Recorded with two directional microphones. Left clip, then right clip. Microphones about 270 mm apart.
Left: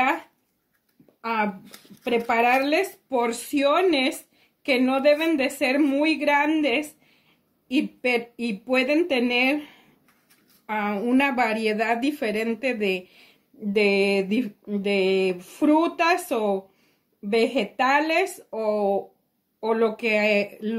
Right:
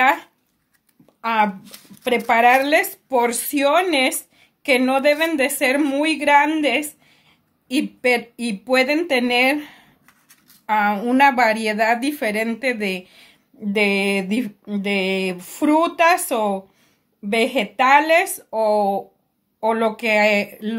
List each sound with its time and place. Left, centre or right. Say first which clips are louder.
1.2 s speech: right 7 dB; right